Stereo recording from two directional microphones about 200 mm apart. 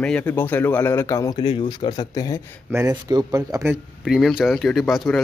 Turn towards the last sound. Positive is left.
turn(degrees=0)  # may be behind; listen again after turning